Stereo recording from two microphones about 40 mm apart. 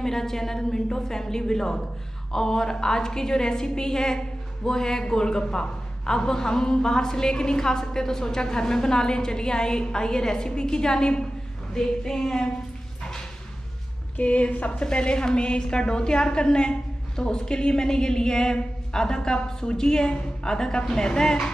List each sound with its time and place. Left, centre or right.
0.0 s a woman's voice: centre
14.1 s a woman's voice: left
14.8 s a woman's voice: left